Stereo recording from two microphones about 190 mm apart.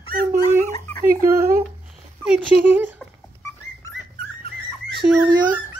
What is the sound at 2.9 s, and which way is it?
Dog, 15° left (ahead or behind).